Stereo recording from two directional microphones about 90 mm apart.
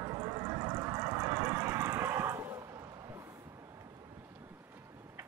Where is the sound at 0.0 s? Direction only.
35° right (ahead or behind).